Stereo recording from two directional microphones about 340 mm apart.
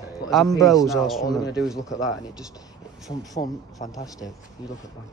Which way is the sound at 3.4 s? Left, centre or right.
Centre.